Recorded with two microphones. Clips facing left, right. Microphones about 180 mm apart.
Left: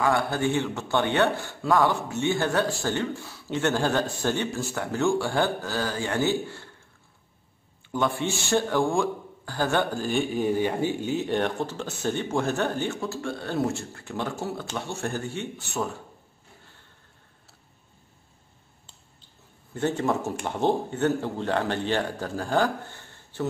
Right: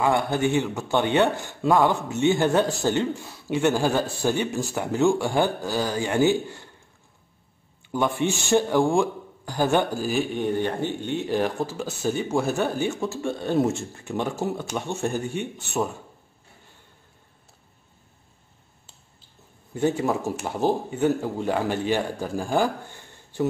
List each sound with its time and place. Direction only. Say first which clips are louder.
0.0 s a man's voice: right 2 dB; 20° right (ahead or behind)
7.9 s a man's voice: right 2 dB; 15° right (ahead or behind)
19.7 s a man's voice: right 2 dB; 10° right (ahead or behind)